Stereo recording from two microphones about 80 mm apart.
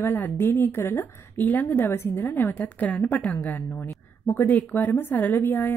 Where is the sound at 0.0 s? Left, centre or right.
Left.